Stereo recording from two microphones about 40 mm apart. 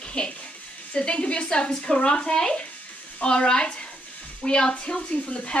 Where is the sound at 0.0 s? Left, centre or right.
Left.